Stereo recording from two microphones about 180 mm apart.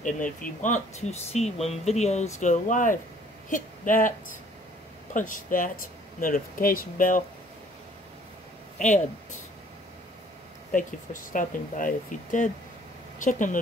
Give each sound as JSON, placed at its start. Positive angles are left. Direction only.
{"t": 0.0, "sound": "speech", "side_deg": 45}
{"t": 5.1, "sound": "speech", "side_deg": 45}
{"t": 8.7, "sound": "speech", "side_deg": 40}
{"t": 10.7, "sound": "speech", "side_deg": 45}